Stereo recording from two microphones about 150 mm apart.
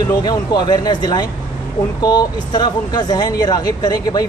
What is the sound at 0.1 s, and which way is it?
Speech, 25° left (ahead or behind).